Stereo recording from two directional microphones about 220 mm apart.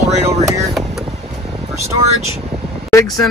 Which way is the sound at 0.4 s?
15° right (ahead or behind).